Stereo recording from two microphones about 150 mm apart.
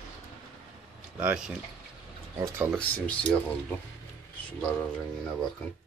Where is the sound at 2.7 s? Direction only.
10° left (ahead or behind).